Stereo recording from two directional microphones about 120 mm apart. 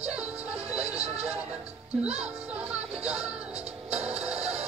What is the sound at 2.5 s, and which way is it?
Music, 10° right (ahead or behind).